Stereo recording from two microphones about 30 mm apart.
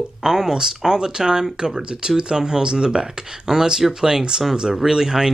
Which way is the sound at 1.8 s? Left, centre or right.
Right.